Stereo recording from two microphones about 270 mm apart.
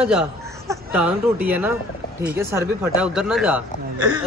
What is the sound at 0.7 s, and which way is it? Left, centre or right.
Speech, centre.